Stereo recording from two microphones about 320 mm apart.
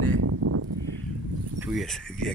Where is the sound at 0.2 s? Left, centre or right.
Right.